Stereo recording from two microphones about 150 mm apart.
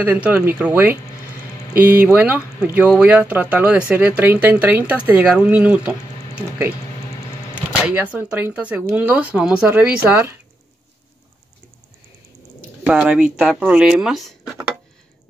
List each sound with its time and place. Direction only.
0.0 s speech: 10° right (ahead or behind)
7.8 s speech: 10° right (ahead or behind)
12.8 s speech: 5° right (ahead or behind)